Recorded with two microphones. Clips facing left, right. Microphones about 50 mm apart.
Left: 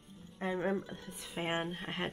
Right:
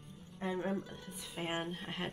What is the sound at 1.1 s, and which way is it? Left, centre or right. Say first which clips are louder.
Speech: left 4 dB; centre.